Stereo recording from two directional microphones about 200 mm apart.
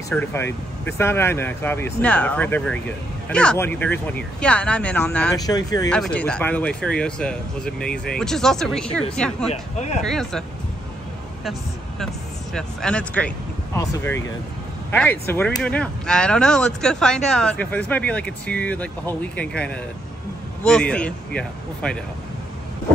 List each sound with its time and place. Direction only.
0.1 s speech: 10° left (ahead or behind)
5.3 s speech: 20° left (ahead or behind)
5.9 s speech: 5° left (ahead or behind)
9.5 s speech: 35° left (ahead or behind)
10.0 s speech: centre (ahead or behind)
12.5 s speech: 5° left (ahead or behind)